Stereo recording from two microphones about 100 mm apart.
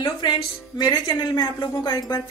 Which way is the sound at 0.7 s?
40° left (ahead or behind).